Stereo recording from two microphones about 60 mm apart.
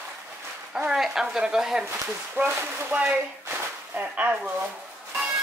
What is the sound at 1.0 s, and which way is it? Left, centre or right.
Speech, centre.